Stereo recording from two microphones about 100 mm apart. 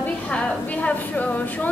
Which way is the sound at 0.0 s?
15° left (ahead or behind).